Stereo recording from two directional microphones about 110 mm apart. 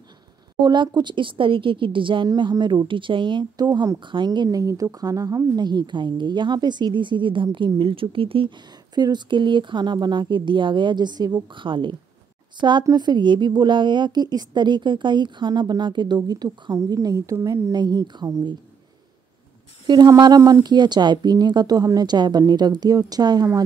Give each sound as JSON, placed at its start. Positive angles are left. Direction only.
{"t": 0.6, "sound": "speech", "side_deg": -40}
{"t": 2.2, "sound": "speech", "side_deg": -40}
{"t": 4.0, "sound": "speech", "side_deg": -45}
{"t": 8.9, "sound": "speech", "side_deg": -40}
{"t": 19.9, "sound": "speech", "side_deg": -40}